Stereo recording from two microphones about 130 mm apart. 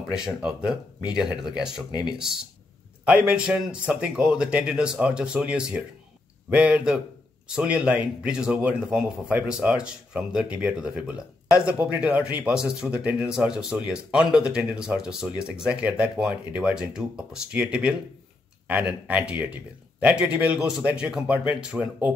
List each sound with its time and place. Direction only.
0.1 s speech: 5° right (ahead or behind)
1.9 s speech: 35° left (ahead or behind)
3.1 s speech: 10° right (ahead or behind)